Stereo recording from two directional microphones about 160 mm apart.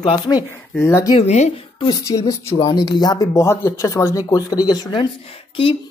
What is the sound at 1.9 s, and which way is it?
Speech, 20° left (ahead or behind).